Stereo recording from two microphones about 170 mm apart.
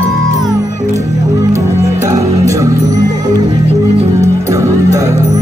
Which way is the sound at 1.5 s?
20° right (ahead or behind).